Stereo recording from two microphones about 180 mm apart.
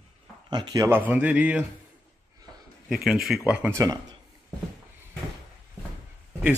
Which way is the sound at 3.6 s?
20° right (ahead or behind).